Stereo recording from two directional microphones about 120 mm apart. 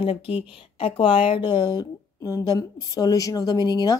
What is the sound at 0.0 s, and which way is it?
Speech, 50° left (ahead or behind).